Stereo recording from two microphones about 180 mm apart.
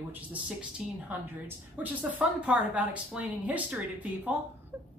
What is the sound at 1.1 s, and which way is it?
Speech, 10° right (ahead or behind).